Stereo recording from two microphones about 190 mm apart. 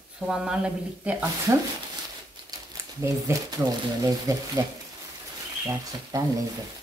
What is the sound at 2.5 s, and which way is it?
Speech, 15° right (ahead or behind).